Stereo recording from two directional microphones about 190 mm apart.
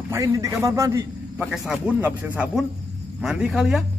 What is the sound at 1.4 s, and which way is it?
Speech, centre (ahead or behind).